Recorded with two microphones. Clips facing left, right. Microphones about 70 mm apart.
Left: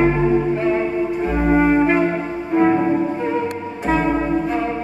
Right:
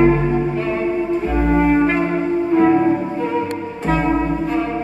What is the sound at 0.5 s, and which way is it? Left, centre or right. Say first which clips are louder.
Music: left 2 dB; left.